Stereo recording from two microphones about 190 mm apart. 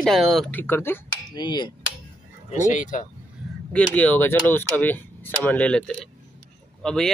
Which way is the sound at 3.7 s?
10° left (ahead or behind).